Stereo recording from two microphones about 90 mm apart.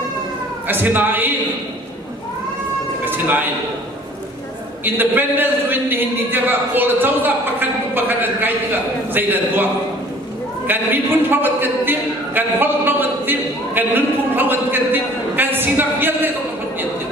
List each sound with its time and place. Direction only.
0.7 s a man's voice: 20° right (ahead or behind)
3.1 s a man's voice: 20° right (ahead or behind)
4.8 s a man's voice: 20° right (ahead or behind)
10.7 s a man's voice: 20° right (ahead or behind)